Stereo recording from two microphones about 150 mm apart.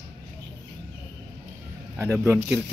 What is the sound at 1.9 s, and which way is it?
Speech, 10° right (ahead or behind).